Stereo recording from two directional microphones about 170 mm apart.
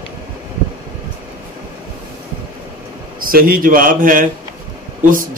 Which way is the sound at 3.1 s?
55° right (ahead or behind).